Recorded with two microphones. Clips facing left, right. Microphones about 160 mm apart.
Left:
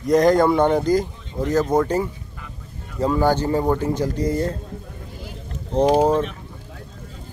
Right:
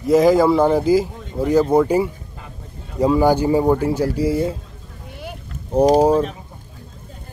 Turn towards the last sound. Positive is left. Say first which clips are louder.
# right 3 dB
turn(degrees=-10)  # may be behind; listen again after turning